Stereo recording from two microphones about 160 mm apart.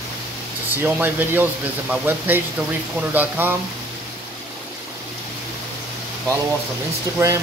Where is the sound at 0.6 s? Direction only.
10° right (ahead or behind).